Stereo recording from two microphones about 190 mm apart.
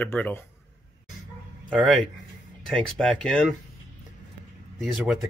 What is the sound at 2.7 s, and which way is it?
Speech, 5° left (ahead or behind).